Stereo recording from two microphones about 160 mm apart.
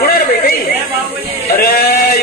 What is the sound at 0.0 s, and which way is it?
Chatter, 65° left (ahead or behind).